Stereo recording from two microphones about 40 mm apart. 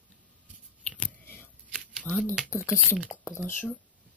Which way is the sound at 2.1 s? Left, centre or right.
Left.